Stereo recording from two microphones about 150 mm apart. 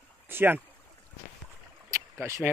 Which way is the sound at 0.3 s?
15° right (ahead or behind).